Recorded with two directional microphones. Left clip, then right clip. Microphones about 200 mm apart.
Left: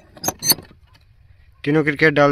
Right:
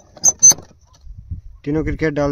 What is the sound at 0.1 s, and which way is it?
Vehicle, 40° right (ahead or behind).